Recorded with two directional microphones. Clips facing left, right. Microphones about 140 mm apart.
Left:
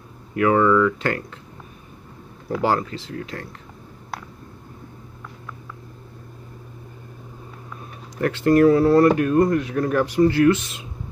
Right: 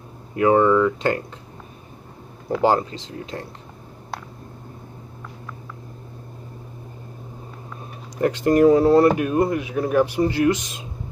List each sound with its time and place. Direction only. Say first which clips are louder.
0.3 s speech: right 1 dB; 25° right (ahead or behind)
2.6 s speech: right 3 dB; 20° right (ahead or behind)
8.2 s speech: even; 20° right (ahead or behind)